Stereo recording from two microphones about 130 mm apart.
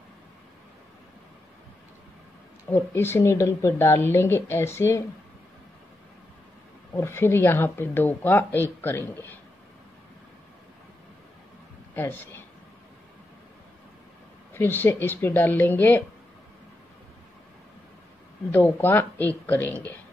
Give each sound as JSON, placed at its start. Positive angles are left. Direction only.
{"t": 2.7, "sound": "speech", "side_deg": 20}
{"t": 7.0, "sound": "speech", "side_deg": 20}
{"t": 11.9, "sound": "speech", "side_deg": 15}
{"t": 14.5, "sound": "speech", "side_deg": 15}
{"t": 18.5, "sound": "speech", "side_deg": 15}